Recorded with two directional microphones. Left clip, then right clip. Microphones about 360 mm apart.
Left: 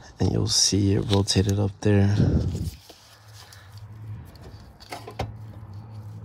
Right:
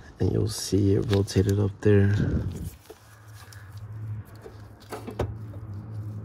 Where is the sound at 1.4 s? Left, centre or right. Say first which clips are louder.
Even; left.